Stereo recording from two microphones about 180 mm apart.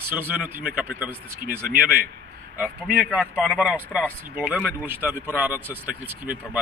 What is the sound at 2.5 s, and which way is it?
Speech, 5° right (ahead or behind).